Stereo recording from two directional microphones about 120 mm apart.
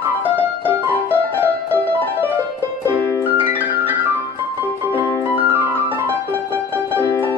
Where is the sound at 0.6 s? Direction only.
15° right (ahead or behind).